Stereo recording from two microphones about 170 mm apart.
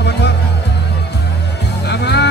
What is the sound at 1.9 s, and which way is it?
Music, 80° left.